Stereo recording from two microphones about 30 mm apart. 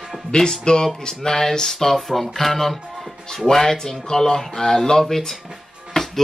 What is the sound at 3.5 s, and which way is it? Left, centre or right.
Speech, centre.